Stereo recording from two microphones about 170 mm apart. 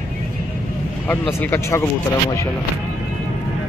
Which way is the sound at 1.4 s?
15° left (ahead or behind).